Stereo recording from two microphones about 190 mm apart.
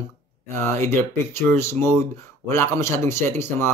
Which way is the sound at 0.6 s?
15° left (ahead or behind).